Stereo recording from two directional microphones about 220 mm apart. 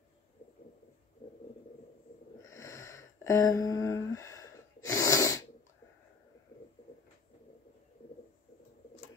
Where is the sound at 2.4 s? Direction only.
15° left (ahead or behind).